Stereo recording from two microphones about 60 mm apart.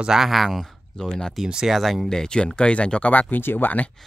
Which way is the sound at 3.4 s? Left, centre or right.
Left.